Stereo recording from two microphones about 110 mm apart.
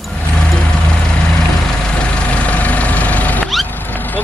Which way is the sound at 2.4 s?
10° left (ahead or behind).